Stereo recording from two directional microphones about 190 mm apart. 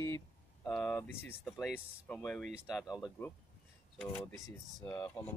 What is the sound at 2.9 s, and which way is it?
Speech, 15° left (ahead or behind).